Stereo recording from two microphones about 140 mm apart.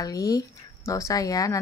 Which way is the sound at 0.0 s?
25° left (ahead or behind).